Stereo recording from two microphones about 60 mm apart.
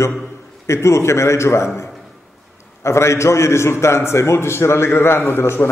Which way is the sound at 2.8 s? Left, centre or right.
Left.